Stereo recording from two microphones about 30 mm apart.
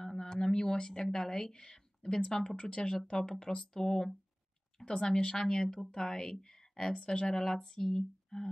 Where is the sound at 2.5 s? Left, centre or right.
Left.